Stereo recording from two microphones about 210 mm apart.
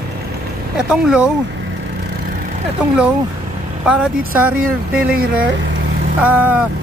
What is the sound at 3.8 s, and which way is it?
Speech, 5° right (ahead or behind).